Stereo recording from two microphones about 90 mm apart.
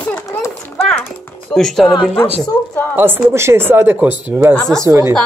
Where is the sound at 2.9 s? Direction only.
25° right (ahead or behind).